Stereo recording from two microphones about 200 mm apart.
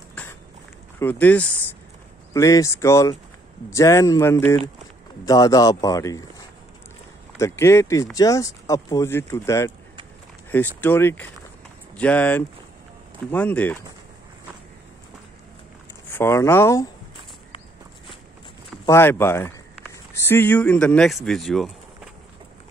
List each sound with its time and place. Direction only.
0.9 s speech: 10° left (ahead or behind)
7.3 s speech: 15° left (ahead or behind)
10.8 s speech: 10° left (ahead or behind)
16.1 s speech: 10° left (ahead or behind)
18.9 s speech: 10° left (ahead or behind)